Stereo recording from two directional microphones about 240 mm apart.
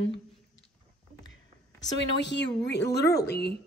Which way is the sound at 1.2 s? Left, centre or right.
Left.